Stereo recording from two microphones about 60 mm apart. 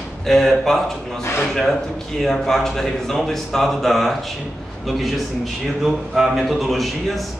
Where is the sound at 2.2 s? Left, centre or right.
Centre.